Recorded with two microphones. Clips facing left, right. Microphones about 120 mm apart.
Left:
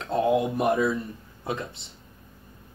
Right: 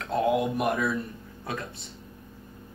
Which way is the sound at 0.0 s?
25° left (ahead or behind).